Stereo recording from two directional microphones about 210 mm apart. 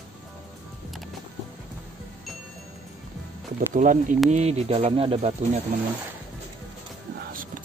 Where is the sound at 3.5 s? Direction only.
40° right (ahead or behind).